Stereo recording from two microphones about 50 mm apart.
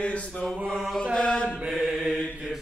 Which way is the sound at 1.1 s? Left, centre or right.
Centre.